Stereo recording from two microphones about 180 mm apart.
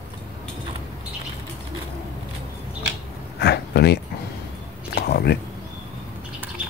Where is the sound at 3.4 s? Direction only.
65° left (ahead or behind).